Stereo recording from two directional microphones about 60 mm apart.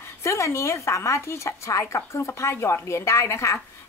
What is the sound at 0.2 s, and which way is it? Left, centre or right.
A woman's voice, left.